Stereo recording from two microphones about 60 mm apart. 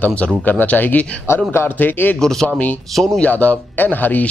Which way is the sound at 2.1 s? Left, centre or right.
Centre.